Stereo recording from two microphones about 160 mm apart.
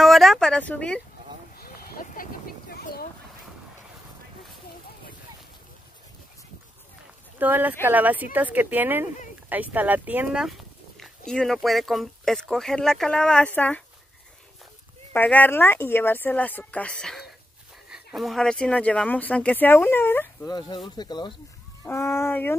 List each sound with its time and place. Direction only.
0.0 s speech: centre (ahead or behind)
1.6 s a sound: 65° left (ahead or behind)
7.3 s speech: 10° right (ahead or behind); by 13.8 s 10° left (ahead or behind)
15.1 s speech: 10° left (ahead or behind)
20.4 s speech: 25° left (ahead or behind)
21.8 s speech: 15° left (ahead or behind)